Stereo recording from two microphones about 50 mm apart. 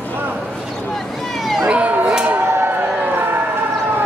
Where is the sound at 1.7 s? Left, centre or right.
Right.